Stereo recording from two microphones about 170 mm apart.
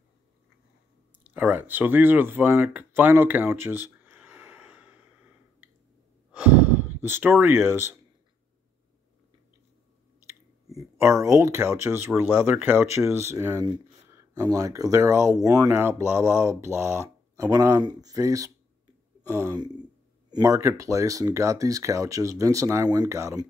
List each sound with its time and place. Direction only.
1.2 s speech: 10° right (ahead or behind)
5.6 s a sound: 5° right (ahead or behind)
6.3 s gasp: 10° right (ahead or behind)
11.2 s speech: 15° right (ahead or behind)